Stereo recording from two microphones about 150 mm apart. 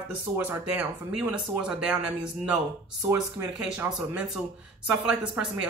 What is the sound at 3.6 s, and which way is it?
Speech, 5° right (ahead or behind).